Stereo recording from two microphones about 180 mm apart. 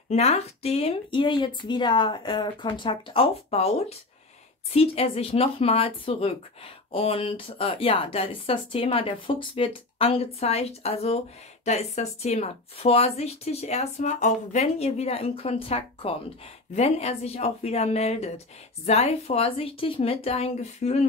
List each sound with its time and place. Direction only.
0.1 s a woman's voice: 35° left (ahead or behind)
4.7 s speech: 35° left (ahead or behind)